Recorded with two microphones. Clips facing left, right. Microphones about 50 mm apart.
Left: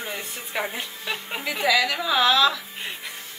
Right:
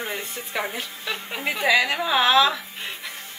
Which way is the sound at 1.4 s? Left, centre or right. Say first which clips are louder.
Right 2 dB; right.